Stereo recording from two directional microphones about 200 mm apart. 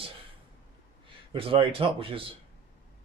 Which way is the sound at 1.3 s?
25° right (ahead or behind).